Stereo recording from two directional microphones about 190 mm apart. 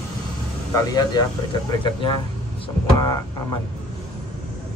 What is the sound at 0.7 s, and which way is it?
Speech, 20° left (ahead or behind).